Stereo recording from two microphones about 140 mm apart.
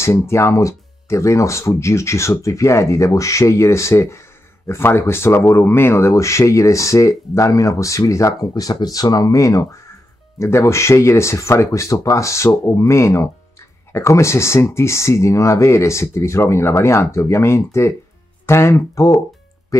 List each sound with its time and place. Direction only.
0.0 s speech: 20° left (ahead or behind)